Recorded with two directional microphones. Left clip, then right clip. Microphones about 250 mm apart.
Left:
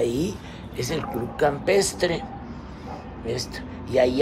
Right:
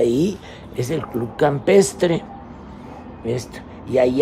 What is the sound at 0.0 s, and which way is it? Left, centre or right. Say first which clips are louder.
Speech: right 6 dB; right.